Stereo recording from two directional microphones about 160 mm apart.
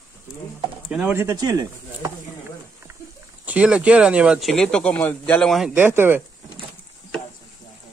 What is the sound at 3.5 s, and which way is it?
Speech, 5° right (ahead or behind).